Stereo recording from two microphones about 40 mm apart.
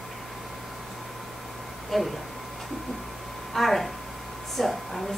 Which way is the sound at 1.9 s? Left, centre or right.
Centre.